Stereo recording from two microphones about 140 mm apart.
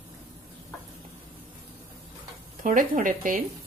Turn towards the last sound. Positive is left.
turn(degrees=-80)